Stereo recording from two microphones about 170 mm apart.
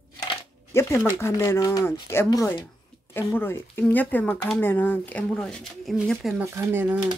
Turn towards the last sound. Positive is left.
turn(degrees=-10)  # may be behind; listen again after turning